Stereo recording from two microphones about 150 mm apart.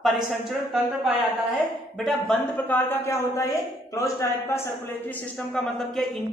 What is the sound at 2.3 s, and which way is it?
A man's voice, 10° left (ahead or behind).